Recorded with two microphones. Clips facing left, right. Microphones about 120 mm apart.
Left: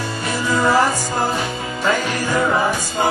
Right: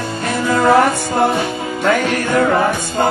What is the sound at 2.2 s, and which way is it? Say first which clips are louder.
Music: right 4 dB; 60° right (ahead or behind).